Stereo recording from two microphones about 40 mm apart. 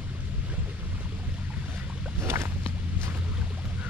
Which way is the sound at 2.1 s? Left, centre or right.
Right.